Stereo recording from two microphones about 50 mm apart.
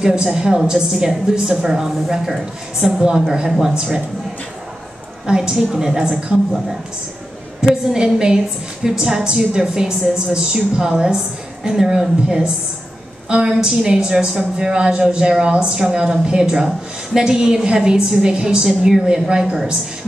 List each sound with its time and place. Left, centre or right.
0.0 s speech: centre
3.4 s speech: centre
3.7 s speech: centre
5.2 s speech: centre
7.9 s speech: centre